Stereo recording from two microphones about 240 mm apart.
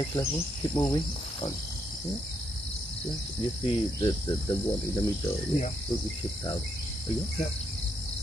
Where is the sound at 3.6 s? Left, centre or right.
Left.